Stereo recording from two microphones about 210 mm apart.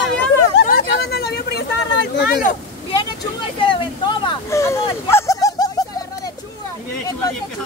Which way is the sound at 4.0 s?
15° left (ahead or behind).